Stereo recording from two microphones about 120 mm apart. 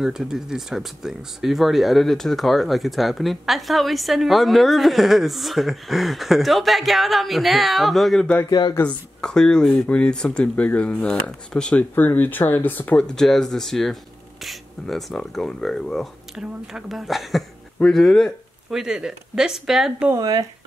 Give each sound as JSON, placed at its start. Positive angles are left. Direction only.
{"t": 0.0, "sound": "speech", "side_deg": -5}
{"t": 8.5, "sound": "speech", "side_deg": 40}
{"t": 8.7, "sound": "speech", "side_deg": 10}
{"t": 20.2, "sound": "speech", "side_deg": -30}